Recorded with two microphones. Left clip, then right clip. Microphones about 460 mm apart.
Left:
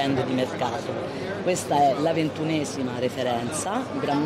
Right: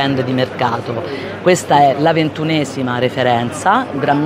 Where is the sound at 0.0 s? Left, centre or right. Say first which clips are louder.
Right 8 dB; right.